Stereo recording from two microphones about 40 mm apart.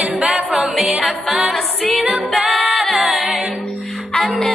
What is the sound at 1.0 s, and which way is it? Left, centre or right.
Music, centre.